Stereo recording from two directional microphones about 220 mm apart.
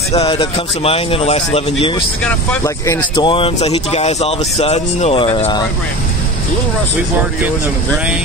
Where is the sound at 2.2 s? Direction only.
10° left (ahead or behind).